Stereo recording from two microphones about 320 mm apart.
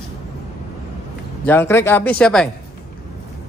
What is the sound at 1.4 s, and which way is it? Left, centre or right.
Speech, centre.